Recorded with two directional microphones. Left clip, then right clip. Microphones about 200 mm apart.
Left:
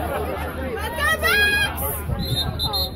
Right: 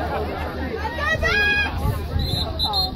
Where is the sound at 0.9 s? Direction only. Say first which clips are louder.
Left 2 dB; 50° left (ahead or behind).